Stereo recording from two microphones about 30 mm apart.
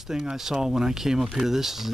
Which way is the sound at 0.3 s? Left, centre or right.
Centre.